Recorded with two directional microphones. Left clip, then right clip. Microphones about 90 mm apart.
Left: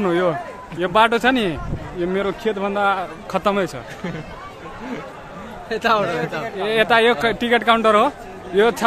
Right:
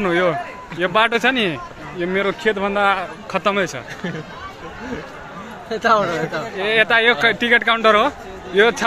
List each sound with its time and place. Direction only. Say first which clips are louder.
0.0 s a man's voice: right 1 dB; 20° left (ahead or behind)
5.7 s a man's voice: right 2 dB; centre (ahead or behind)
6.5 s a man's voice: right 1 dB; 30° left (ahead or behind)